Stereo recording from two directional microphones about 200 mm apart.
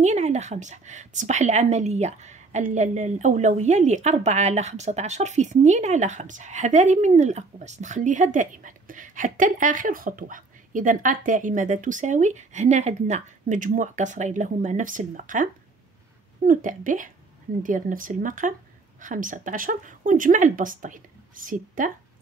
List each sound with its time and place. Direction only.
0.0 s a woman's voice: 35° right (ahead or behind)